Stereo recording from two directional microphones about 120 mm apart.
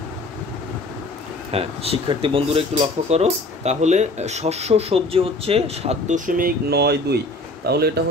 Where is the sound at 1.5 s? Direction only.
55° right (ahead or behind); by 6.3 s 85° right.